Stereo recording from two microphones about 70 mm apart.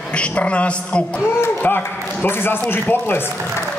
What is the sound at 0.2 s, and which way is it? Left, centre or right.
Speech, centre.